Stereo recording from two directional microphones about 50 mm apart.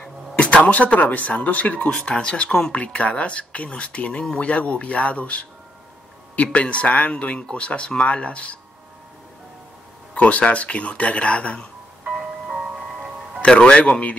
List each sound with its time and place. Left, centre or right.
0.4 s speech: left
10.1 s speech: left
12.0 s music: centre
13.5 s speech: centre